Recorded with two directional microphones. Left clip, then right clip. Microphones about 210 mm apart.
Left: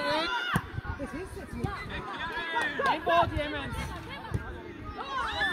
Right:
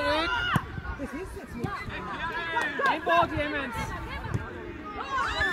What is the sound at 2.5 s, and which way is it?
Speech, 50° right (ahead or behind).